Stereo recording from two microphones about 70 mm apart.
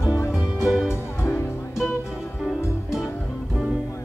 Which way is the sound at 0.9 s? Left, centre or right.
Left.